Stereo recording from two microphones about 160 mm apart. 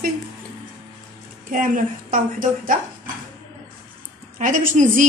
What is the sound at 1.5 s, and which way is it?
A woman's voice, 55° right (ahead or behind).